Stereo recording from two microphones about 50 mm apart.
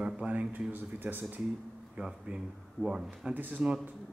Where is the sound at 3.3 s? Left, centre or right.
Right.